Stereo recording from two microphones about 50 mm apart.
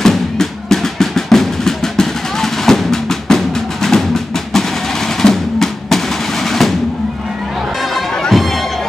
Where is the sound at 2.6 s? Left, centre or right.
Centre.